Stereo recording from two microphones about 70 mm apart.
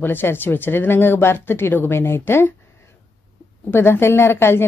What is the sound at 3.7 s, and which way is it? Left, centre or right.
A woman's voice, left.